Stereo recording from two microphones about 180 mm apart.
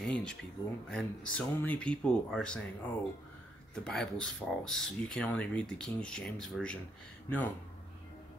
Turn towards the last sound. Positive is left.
turn(degrees=10)  # may be behind; listen again after turning